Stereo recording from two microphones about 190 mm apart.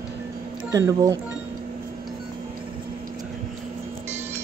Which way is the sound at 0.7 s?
20° right (ahead or behind).